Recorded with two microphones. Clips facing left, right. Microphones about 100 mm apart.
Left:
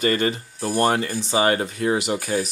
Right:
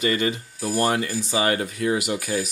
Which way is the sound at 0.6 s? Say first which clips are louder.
Left 2 dB; 30° left (ahead or behind).